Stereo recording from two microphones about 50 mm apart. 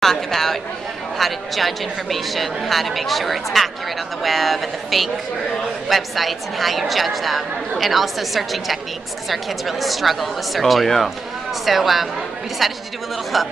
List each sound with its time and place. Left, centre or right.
0.0 s chatter: centre
1.1 s a woman's voice: centre